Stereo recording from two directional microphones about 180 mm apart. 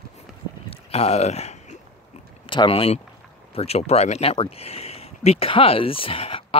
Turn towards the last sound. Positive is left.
turn(degrees=30)  # may be behind; listen again after turning